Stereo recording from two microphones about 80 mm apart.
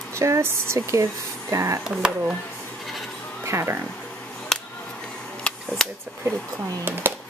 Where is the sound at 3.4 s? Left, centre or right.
Right.